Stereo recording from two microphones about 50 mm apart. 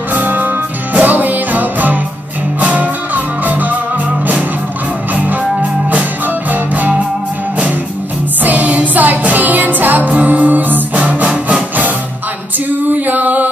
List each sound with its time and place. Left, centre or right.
0.1 s music: right
5.1 s music: right
8.5 s music: right
12.9 s mantra: right